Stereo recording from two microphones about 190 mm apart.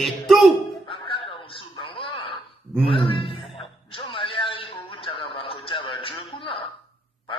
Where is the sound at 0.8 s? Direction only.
30° left (ahead or behind).